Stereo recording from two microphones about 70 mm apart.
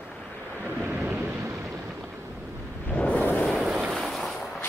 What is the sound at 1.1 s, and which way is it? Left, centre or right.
Vehicle, right.